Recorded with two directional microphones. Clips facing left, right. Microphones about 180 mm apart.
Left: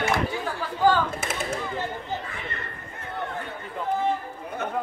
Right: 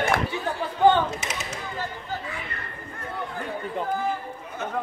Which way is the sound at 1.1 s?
50° left (ahead or behind).